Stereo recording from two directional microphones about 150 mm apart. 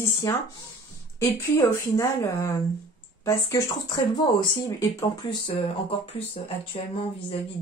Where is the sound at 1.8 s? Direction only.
20° left (ahead or behind).